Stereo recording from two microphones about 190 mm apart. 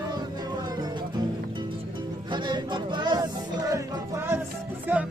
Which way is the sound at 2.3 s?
25° right (ahead or behind).